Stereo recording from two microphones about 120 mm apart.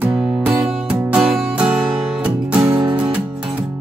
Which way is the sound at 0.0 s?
10° right (ahead or behind).